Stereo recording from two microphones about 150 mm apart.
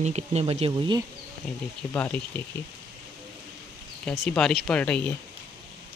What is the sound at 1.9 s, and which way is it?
Speech, 10° left (ahead or behind).